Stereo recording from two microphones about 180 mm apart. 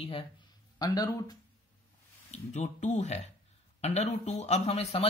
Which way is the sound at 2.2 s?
40° left (ahead or behind).